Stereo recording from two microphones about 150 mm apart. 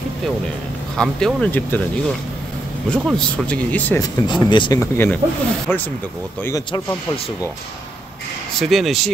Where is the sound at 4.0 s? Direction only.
30° left (ahead or behind).